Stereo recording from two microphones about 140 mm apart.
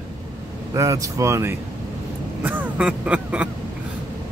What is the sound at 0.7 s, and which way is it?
Speech, 25° right (ahead or behind).